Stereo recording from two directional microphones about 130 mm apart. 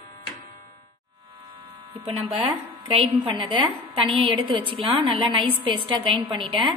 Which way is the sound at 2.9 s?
45° right (ahead or behind).